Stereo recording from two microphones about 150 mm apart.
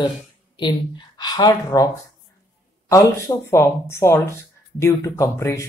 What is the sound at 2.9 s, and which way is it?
Speech, 20° left (ahead or behind).